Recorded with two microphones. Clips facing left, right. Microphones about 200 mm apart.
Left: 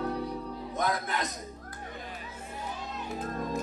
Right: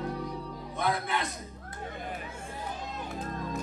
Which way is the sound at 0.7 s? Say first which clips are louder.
Right 1 dB; 40° left (ahead or behind).